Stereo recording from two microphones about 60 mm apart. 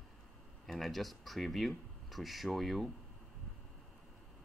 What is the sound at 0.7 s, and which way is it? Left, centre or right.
Speech, centre.